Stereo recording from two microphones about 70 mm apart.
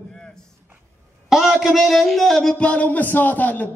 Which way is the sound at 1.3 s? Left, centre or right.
Centre.